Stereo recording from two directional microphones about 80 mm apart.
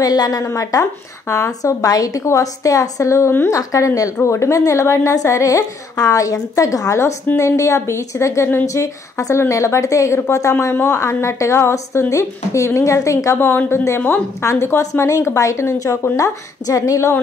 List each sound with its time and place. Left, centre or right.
0.0 s speech: left
0.4 s a woman's voice: left
3.5 s a woman's voice: left
10.5 s a woman's voice: left
13.4 s a woman's voice: left